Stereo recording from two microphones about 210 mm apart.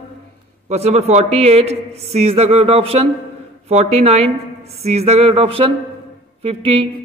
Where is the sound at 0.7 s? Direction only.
30° right (ahead or behind).